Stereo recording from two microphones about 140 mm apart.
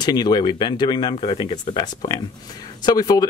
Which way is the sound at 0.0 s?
30° left (ahead or behind).